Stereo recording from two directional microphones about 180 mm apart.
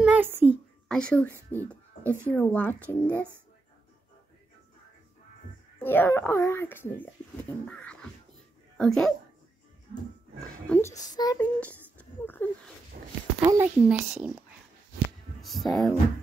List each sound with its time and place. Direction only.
0.0 s a sound: 10° right (ahead or behind)
0.8 s speech: 5° left (ahead or behind)
5.8 s speech: 10° left (ahead or behind)
10.7 s speech: 15° left (ahead or behind)
11.3 s speech: 10° left (ahead or behind)
13.0 s dog: 50° right (ahead or behind)
13.4 s speech: 20° right (ahead or behind)
13.7 s speech: 5° right (ahead or behind)
15.4 s speech: centre (ahead or behind)